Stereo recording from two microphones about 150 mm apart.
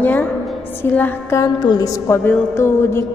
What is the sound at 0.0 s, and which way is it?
A woman's voice, 10° left (ahead or behind).